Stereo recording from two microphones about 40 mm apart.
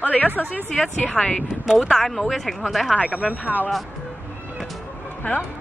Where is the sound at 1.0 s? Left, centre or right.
Left.